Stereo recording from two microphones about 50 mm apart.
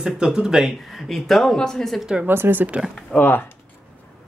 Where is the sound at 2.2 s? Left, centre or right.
Right.